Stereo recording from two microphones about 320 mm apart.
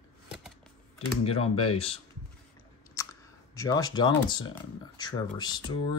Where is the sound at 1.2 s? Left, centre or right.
Centre.